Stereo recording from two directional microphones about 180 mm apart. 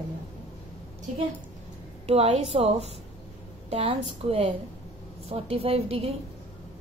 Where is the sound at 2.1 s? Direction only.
35° right (ahead or behind).